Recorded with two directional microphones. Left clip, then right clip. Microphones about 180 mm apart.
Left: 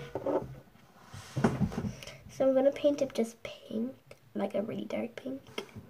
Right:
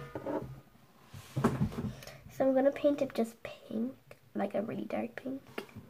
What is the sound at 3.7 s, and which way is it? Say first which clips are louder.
Whispering: left 1 dB; 15° left (ahead or behind).